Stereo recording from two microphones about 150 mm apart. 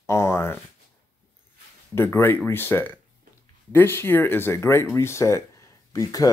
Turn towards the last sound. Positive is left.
turn(degrees=25)  # may be behind; listen again after turning